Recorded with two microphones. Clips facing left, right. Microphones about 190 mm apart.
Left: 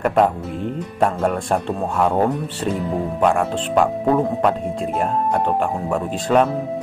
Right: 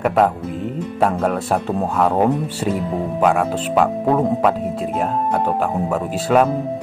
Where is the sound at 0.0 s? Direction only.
Centre (ahead or behind).